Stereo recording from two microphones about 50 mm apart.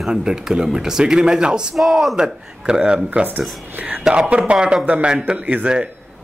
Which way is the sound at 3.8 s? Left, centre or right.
Right.